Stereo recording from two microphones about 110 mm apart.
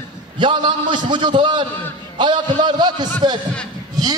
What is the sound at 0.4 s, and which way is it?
A man's voice, 50° right (ahead or behind).